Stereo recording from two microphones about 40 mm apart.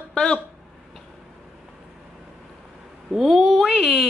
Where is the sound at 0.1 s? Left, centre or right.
Centre.